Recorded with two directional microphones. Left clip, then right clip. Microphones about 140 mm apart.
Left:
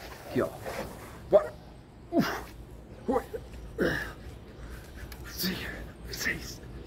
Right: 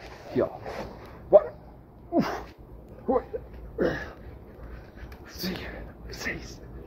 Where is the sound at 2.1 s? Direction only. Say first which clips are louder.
Right 2 dB; 30° left (ahead or behind).